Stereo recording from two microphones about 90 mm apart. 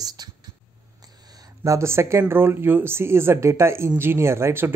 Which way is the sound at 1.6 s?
35° right (ahead or behind).